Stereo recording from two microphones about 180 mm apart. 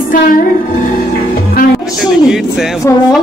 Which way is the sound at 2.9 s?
15° left (ahead or behind).